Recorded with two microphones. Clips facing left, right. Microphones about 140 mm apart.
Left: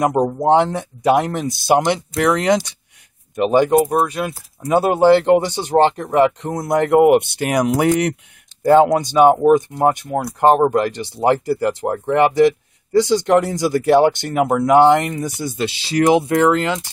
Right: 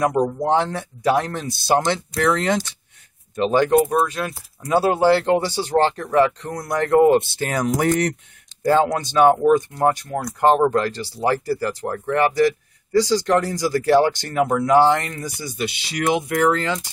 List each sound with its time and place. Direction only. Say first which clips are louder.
0.2 s speech: left 4 dB; 25° left (ahead or behind)
15.6 s speech: left 6 dB; 30° left (ahead or behind)